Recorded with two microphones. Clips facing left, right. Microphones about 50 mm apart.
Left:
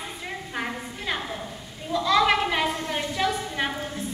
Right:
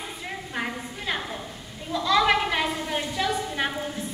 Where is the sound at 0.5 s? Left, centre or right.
Centre.